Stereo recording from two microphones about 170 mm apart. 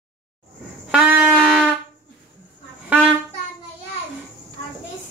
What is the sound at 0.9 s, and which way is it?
Wind instrument, 10° right (ahead or behind).